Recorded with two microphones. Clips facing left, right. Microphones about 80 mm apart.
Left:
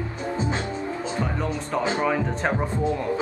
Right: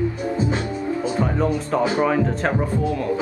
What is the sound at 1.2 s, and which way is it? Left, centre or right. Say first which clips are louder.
Speech: right 6 dB; centre.